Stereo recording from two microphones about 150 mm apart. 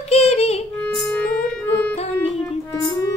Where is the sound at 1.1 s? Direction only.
10° left (ahead or behind).